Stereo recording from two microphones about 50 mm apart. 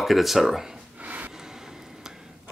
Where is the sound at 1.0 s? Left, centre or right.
Right.